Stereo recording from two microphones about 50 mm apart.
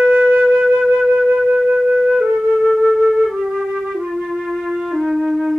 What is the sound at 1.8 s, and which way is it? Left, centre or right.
Flute, centre.